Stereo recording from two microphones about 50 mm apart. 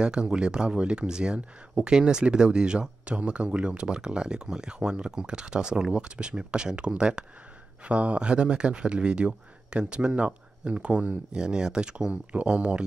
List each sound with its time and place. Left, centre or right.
0.0 s speech: centre